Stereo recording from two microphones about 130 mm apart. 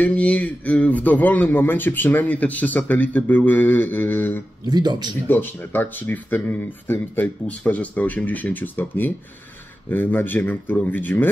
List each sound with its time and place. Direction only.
0.0 s a man's voice: 10° left (ahead or behind)
4.6 s a man's voice: 35° right (ahead or behind)
5.3 s a man's voice: 15° left (ahead or behind)